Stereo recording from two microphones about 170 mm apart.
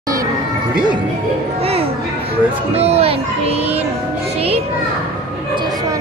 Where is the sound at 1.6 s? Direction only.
35° right (ahead or behind).